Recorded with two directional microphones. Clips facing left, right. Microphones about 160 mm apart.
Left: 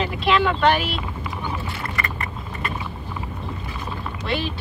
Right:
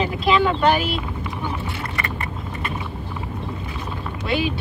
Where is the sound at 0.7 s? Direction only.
45° right (ahead or behind).